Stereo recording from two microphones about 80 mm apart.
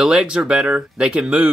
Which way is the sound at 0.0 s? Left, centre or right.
Centre.